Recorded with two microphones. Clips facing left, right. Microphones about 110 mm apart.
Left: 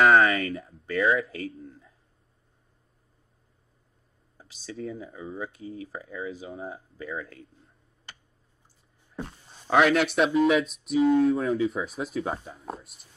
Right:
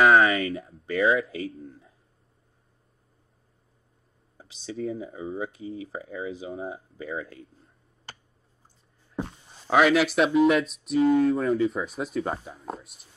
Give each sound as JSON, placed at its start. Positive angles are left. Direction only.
{"t": 0.0, "sound": "a sound", "side_deg": -5}
{"t": 4.7, "sound": "speech", "side_deg": 0}
{"t": 5.0, "sound": "speech", "side_deg": -20}
{"t": 5.6, "sound": "speech", "side_deg": -5}
{"t": 6.6, "sound": "speech", "side_deg": -15}
{"t": 9.7, "sound": "speech", "side_deg": 0}